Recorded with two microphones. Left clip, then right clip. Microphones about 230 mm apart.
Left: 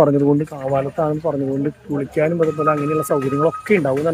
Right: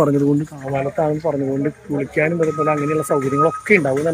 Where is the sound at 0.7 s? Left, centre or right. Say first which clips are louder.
Even; centre.